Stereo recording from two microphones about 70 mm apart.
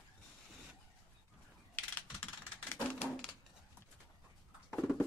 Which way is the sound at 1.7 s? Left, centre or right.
Left.